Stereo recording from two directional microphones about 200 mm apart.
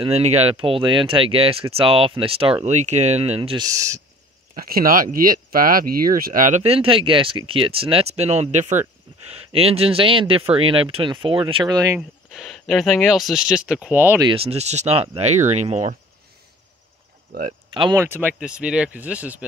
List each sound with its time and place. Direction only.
0.0 s speech: 35° right (ahead or behind)
4.6 s speech: 50° right (ahead or behind); by 12.0 s 20° right (ahead or behind)
12.3 s speech: centre (ahead or behind)
14.2 s speech: 30° right (ahead or behind)
17.3 s speech: 45° right (ahead or behind)
17.7 s speech: 25° right (ahead or behind)
18.0 s speech: 10° right (ahead or behind)